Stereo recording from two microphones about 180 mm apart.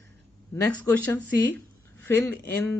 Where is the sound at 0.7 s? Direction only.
10° left (ahead or behind).